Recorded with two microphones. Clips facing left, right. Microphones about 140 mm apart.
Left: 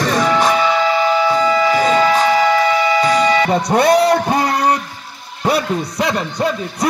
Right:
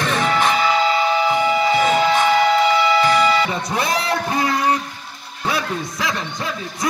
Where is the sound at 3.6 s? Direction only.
60° left (ahead or behind).